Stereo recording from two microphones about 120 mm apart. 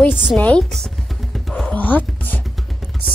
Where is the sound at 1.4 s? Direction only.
5° left (ahead or behind).